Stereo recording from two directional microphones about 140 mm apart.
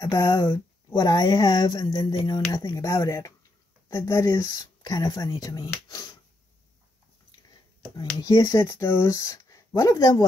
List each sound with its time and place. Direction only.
0.0 s speech: 20° left (ahead or behind)
8.2 s speech: 25° left (ahead or behind)